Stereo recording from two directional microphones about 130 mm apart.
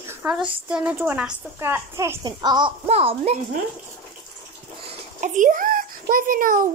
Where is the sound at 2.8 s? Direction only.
55° right (ahead or behind).